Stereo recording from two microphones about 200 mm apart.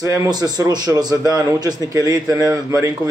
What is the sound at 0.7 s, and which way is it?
A man's voice, 20° right (ahead or behind).